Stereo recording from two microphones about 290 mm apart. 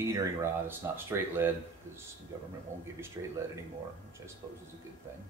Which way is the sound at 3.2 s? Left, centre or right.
Centre.